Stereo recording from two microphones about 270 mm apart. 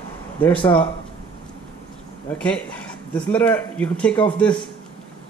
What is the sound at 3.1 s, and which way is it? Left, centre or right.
Speech, centre.